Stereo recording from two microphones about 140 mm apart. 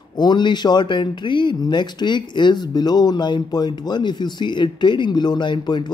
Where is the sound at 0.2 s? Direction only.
30° left (ahead or behind).